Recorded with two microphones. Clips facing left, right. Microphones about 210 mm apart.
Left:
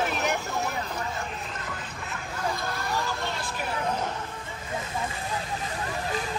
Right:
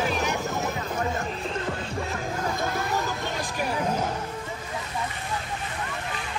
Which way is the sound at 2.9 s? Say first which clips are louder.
Right 2 dB; 20° right (ahead or behind).